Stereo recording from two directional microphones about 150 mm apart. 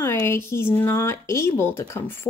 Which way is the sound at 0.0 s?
15° left (ahead or behind).